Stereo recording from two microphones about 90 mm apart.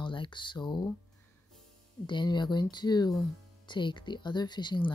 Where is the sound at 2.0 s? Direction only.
55° left (ahead or behind).